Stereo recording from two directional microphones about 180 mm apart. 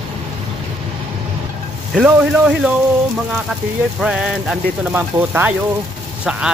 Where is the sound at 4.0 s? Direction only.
5° right (ahead or behind).